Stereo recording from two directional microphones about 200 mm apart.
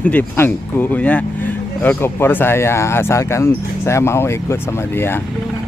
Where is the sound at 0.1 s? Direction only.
10° left (ahead or behind).